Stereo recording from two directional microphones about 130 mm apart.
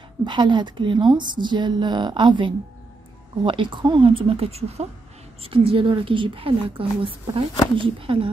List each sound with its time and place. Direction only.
0.2 s a woman's voice: 35° right (ahead or behind)